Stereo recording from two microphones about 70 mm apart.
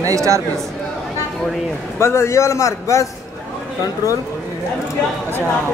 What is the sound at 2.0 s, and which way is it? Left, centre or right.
A man's voice, left.